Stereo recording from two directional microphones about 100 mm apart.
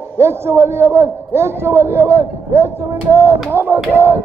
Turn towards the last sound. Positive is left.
turn(degrees=-25)  # may be behind; listen again after turning